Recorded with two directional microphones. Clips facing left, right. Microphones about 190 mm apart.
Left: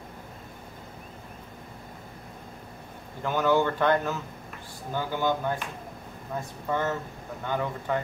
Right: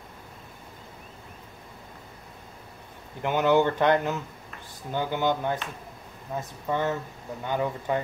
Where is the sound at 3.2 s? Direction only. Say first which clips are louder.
Right 2 dB; 20° right (ahead or behind).